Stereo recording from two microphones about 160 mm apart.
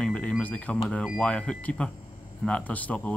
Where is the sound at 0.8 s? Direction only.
5° left (ahead or behind).